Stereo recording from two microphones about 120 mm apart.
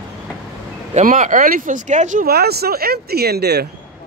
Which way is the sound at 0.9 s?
90° right.